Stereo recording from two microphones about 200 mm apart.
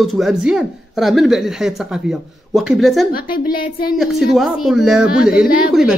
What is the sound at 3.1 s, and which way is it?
Speech, 45° left (ahead or behind).